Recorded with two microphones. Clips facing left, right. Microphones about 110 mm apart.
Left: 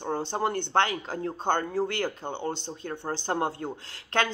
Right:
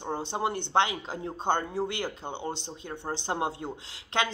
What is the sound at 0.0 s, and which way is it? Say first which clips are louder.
Speech: left 2 dB; 15° right (ahead or behind).